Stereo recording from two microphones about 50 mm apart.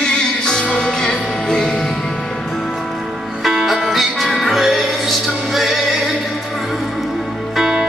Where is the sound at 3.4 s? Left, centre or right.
Centre.